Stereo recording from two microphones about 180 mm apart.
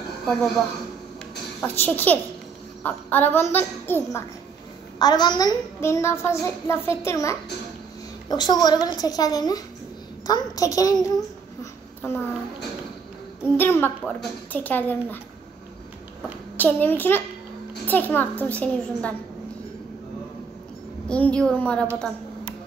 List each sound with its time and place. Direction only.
0.3 s a woman's voice: 5° left (ahead or behind)
4.9 s a woman's voice: 25° left (ahead or behind)
11.6 s a sound: 10° left (ahead or behind)
13.6 s a woman's voice: 10° left (ahead or behind)
16.5 s a woman's voice: 10° left (ahead or behind)
21.1 s a woman's voice: 5° left (ahead or behind)